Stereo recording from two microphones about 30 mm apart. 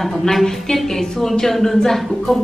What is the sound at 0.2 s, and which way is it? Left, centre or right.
A woman's voice, centre.